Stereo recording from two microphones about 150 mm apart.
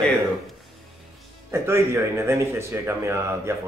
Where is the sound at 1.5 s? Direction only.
15° right (ahead or behind).